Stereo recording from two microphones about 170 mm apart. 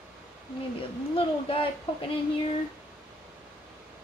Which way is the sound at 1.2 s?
35° left (ahead or behind).